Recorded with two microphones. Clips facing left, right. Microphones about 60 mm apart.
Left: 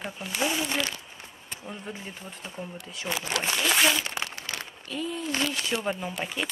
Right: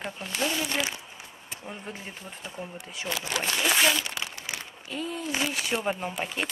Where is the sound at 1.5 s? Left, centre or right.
Centre.